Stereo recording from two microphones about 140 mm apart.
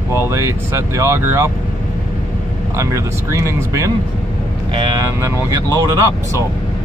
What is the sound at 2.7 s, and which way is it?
Speech, 20° right (ahead or behind).